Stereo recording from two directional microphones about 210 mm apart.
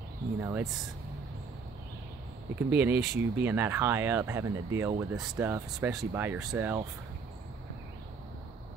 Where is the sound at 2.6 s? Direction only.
10° right (ahead or behind).